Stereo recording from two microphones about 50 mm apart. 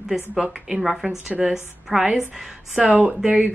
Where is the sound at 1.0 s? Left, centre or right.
Right.